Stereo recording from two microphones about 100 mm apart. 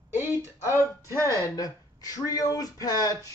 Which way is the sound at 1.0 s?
30° right (ahead or behind).